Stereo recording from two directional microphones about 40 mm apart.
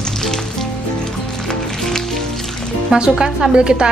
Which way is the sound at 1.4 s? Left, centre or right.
Centre.